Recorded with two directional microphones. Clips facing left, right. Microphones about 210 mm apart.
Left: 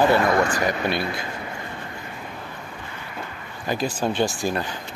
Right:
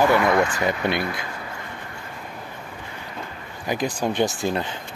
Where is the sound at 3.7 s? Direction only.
15° right (ahead or behind).